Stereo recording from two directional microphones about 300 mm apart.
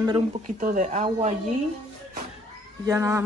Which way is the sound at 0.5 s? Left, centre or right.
Right.